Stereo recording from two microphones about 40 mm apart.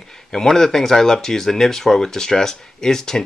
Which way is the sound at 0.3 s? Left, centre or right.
Centre.